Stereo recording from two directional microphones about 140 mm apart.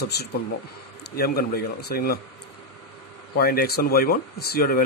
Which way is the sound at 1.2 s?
90° left.